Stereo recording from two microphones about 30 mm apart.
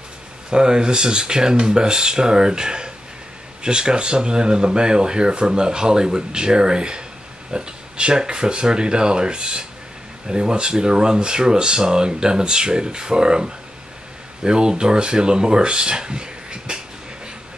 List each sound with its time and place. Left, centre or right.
0.5 s speech: right